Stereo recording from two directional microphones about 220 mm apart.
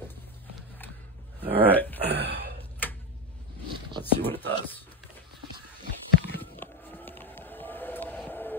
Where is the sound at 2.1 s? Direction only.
50° right (ahead or behind).